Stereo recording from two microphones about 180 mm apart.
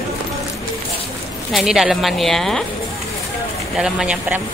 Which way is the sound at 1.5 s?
Centre (ahead or behind).